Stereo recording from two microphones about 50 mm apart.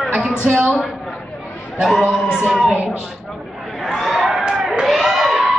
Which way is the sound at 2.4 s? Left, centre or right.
Centre.